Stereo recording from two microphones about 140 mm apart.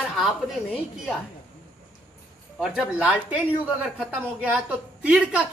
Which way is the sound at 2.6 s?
5° right (ahead or behind).